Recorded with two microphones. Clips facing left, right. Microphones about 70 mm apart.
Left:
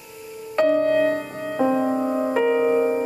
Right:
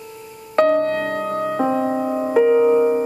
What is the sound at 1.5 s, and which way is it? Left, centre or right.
Music, right.